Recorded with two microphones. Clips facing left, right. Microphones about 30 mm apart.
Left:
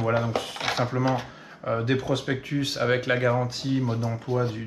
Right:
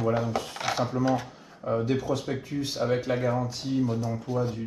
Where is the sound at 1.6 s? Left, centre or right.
Left.